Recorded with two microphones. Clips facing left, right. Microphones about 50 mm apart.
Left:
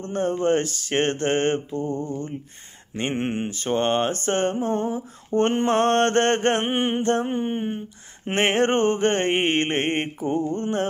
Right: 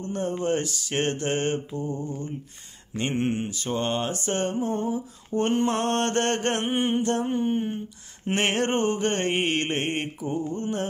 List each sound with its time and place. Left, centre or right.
0.0 s mantra: left
3.0 s mantra: left